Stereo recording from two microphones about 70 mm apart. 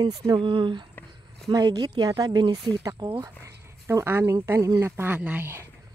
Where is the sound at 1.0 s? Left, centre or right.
Left.